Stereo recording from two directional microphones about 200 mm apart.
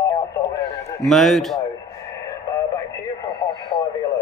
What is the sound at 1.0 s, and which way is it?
Speech, centre (ahead or behind).